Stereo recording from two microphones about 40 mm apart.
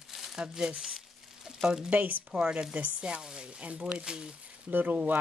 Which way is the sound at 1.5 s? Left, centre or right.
Right.